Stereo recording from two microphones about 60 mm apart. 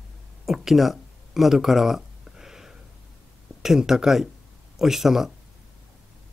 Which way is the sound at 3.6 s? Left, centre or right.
Centre.